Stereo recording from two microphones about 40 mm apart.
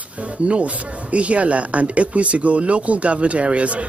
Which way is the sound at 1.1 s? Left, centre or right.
Right.